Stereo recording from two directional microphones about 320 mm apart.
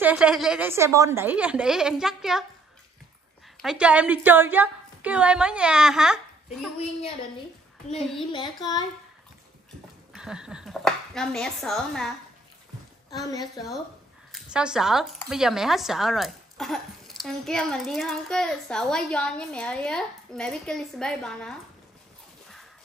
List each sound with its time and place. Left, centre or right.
0.0 s speech: centre
3.5 s speech: centre
6.8 s speech: centre
8.0 s speech: centre
8.3 s speech: centre
10.1 s speech: centre
13.2 s speech: centre
14.3 s speech: centre